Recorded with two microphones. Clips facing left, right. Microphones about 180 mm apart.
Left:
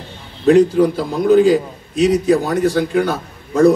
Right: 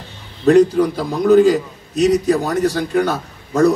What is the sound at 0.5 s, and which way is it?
A man's voice, 45° right (ahead or behind).